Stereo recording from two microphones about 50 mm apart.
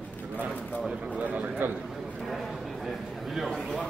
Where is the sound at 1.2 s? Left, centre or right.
Right.